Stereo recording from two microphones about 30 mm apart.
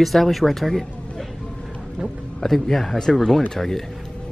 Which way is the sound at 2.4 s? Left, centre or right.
Centre.